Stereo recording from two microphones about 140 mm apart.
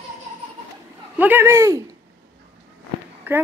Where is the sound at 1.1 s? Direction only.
15° right (ahead or behind).